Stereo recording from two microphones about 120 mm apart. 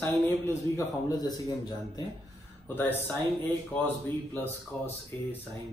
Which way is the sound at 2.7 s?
15° left (ahead or behind).